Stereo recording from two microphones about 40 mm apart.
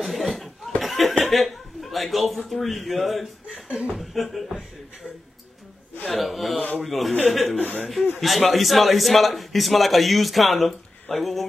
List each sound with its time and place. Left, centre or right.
0.0 s chuckle: centre
3.6 s beatboxing: right
3.9 s a man's voice: centre
6.0 s a man's voice: centre